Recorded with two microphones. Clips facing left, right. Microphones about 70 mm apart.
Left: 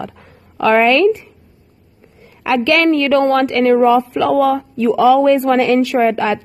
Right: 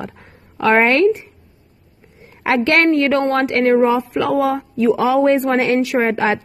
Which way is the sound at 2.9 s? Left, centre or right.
Right.